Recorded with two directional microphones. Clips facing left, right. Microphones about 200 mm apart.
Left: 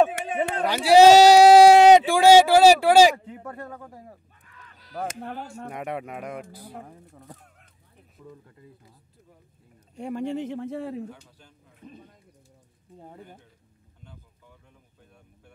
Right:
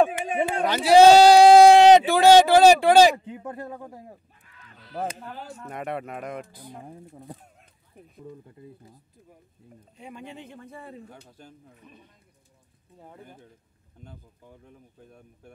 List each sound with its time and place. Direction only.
0.3 s speech: 10° right (ahead or behind)
0.7 s speech: 10° left (ahead or behind)
3.3 s speech: 20° right (ahead or behind)
5.2 s speech: 50° left (ahead or behind)
5.7 s speech: 10° left (ahead or behind)
9.9 s speech: 55° left (ahead or behind)
10.3 s speech: 80° left
11.1 s speech: 45° right (ahead or behind)
14.0 s speech: 45° right (ahead or behind)